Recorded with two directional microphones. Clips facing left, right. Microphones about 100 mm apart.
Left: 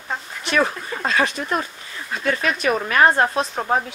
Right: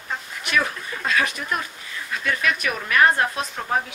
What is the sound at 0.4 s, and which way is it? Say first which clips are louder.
Speech: left 4 dB; 30° left (ahead or behind).